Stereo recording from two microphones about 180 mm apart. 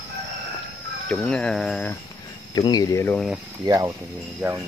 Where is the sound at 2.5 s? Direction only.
20° left (ahead or behind).